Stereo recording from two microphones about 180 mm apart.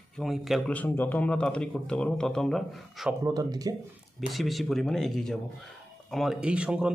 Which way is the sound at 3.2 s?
20° right (ahead or behind).